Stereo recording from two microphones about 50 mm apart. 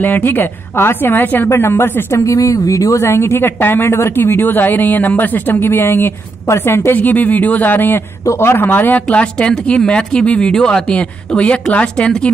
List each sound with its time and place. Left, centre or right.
0.0 s a woman's voice: left
1.2 s speech: left
1.5 s a woman's voice: left
2.1 s a woman's voice: left
6.9 s speech: left
9.1 s speech: centre
11.0 s speech: left